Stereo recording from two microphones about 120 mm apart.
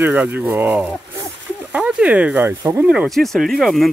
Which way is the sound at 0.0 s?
15° right (ahead or behind).